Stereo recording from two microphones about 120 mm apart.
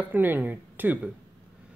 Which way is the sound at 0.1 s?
15° right (ahead or behind).